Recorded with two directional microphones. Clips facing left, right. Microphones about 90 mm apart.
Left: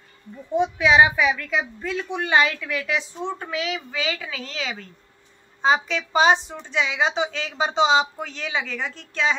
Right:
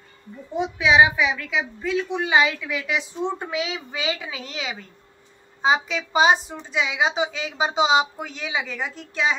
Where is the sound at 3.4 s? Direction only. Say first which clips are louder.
Even; 20° right (ahead or behind).